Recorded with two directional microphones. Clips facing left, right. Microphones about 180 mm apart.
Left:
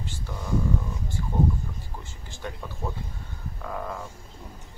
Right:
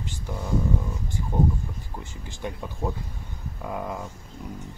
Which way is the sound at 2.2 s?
15° right (ahead or behind).